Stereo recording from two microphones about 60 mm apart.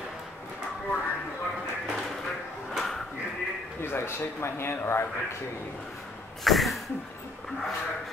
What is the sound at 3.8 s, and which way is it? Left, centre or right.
Speech, left.